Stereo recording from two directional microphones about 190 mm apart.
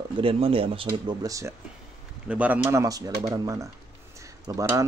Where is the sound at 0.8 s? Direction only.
20° right (ahead or behind).